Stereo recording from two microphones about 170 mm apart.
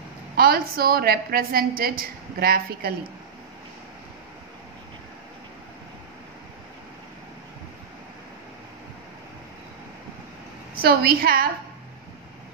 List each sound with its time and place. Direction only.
0.4 s a woman's voice: 60° right (ahead or behind)
10.8 s a woman's voice: 65° right (ahead or behind)